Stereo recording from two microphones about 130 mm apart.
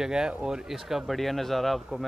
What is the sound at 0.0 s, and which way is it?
Speech, 5° right (ahead or behind).